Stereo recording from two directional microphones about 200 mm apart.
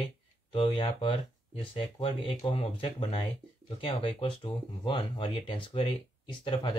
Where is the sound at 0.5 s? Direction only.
25° left (ahead or behind).